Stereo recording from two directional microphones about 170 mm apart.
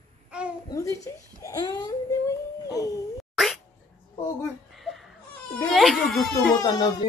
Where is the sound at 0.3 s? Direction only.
5° right (ahead or behind).